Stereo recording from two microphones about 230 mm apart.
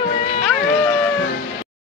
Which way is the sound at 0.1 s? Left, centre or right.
Left.